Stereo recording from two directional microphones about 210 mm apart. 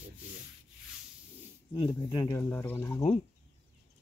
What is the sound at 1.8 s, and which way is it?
Speech, 20° left (ahead or behind).